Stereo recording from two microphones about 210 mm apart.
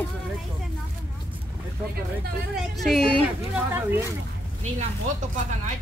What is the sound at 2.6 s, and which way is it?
Speech, centre (ahead or behind).